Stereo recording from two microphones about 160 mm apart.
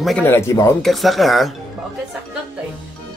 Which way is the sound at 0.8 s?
Centre (ahead or behind).